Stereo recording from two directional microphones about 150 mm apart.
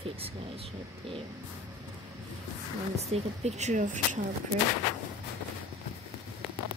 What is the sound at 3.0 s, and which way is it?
Speech, 45° right (ahead or behind).